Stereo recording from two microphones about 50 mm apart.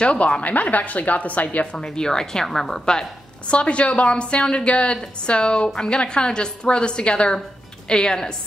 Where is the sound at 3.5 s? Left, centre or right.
Left.